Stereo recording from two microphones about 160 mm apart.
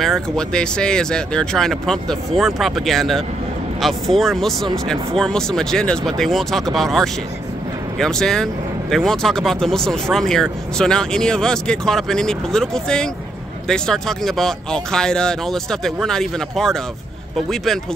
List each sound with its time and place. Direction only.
0.0 s speech: 5° left (ahead or behind)